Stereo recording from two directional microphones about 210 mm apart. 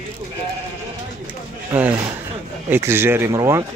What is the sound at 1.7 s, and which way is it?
Speech, 10° right (ahead or behind).